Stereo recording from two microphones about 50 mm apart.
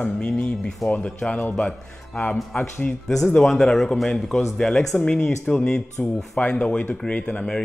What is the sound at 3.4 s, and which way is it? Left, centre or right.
Speech, centre.